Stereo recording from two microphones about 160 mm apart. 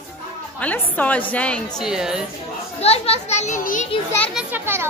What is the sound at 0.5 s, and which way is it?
A woman's voice, 10° left (ahead or behind).